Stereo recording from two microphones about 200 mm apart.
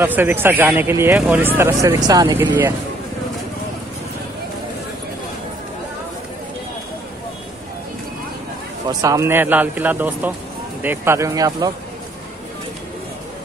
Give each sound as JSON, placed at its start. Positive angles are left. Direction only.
{"t": 0.0, "sound": "a man's voice", "side_deg": -10}
{"t": 8.8, "sound": "a man's voice", "side_deg": -15}